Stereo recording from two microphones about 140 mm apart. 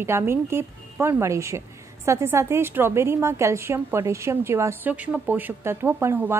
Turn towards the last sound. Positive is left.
turn(degrees=-15)  # may be behind; listen again after turning